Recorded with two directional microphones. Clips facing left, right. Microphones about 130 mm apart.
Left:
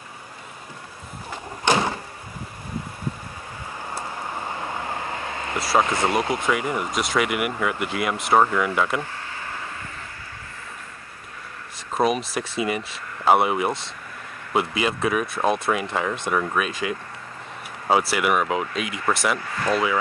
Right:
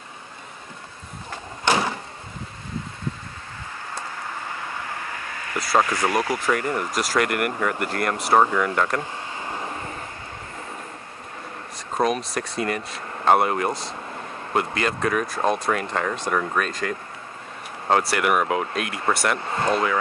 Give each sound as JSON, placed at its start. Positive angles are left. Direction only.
{"t": 4.5, "sound": "vehicle", "side_deg": 25}
{"t": 5.8, "sound": "speech", "side_deg": 25}
{"t": 6.4, "sound": "speech", "side_deg": 10}
{"t": 9.0, "sound": "a sound", "side_deg": -20}
{"t": 12.0, "sound": "speech", "side_deg": 5}
{"t": 18.7, "sound": "speech", "side_deg": -60}
{"t": 19.4, "sound": "speech", "side_deg": -25}